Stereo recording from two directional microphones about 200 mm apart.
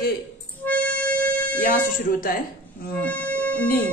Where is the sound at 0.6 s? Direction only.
10° left (ahead or behind).